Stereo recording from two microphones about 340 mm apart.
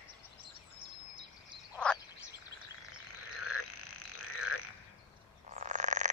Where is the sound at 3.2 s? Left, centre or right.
Left.